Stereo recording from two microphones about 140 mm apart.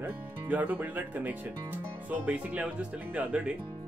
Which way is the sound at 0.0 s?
10° right (ahead or behind).